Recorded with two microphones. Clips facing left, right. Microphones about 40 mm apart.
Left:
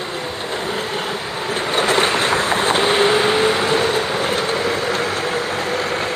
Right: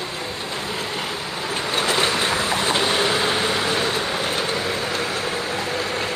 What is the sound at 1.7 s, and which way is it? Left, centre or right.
Vehicle, left.